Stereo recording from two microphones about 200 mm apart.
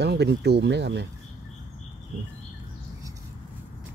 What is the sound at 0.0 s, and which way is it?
Speech, 55° right (ahead or behind).